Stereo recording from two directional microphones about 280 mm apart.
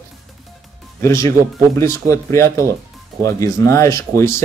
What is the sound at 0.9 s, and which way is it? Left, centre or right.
Speech, centre.